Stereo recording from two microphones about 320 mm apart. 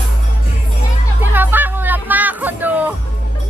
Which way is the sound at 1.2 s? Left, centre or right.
Centre.